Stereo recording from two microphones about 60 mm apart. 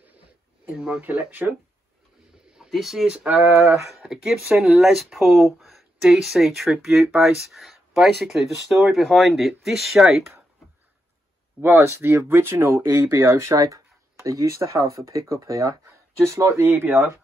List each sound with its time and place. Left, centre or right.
0.7 s speech: centre
1.0 s speech: right
2.7 s speech: centre
3.3 s speech: right
4.0 s speech: centre
11.6 s speech: right
14.2 s speech: right
16.6 s speech: right